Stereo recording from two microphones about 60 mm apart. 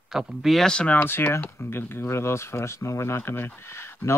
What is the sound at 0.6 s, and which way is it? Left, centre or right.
Speech, centre.